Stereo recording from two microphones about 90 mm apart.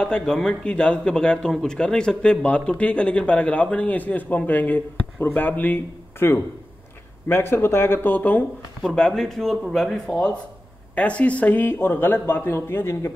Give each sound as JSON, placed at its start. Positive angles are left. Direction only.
{"t": 0.0, "sound": "a man's voice", "side_deg": 5}
{"t": 8.8, "sound": "a man's voice", "side_deg": 5}